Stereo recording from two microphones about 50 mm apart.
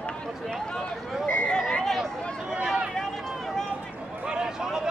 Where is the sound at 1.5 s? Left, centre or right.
Centre.